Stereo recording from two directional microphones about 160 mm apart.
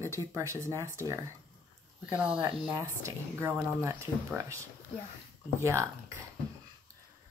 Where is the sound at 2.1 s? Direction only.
5° right (ahead or behind).